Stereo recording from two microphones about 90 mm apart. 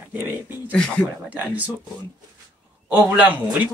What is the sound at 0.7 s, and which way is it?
Speech, 10° left (ahead or behind).